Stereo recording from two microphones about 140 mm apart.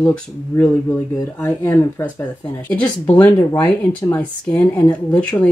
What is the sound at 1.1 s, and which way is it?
Speech, 20° left (ahead or behind).